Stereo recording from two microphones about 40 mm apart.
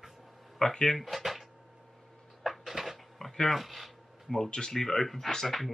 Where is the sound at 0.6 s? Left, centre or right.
Centre.